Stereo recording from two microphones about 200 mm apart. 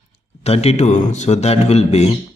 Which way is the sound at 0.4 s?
30° left (ahead or behind).